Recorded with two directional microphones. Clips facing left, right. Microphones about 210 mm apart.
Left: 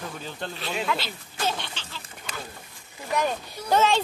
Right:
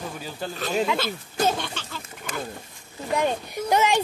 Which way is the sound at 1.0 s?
45° right (ahead or behind).